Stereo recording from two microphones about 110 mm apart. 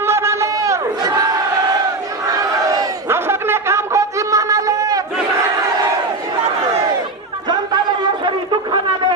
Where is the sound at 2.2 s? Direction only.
35° right (ahead or behind).